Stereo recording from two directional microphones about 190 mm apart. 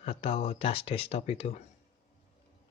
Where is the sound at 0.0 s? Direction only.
35° left (ahead or behind).